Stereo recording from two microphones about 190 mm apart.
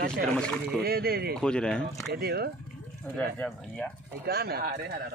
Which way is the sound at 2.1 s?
55° right (ahead or behind).